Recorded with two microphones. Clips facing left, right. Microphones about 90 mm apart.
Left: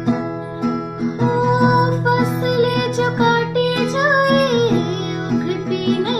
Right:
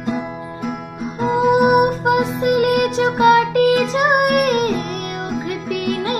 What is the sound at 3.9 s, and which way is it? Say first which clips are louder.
Music: even; 35° left (ahead or behind).